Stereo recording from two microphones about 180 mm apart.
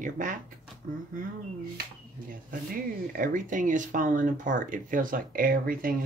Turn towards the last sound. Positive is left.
turn(degrees=-50)  # may be behind; listen again after turning